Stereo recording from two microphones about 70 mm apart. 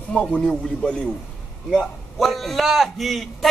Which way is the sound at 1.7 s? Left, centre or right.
Centre.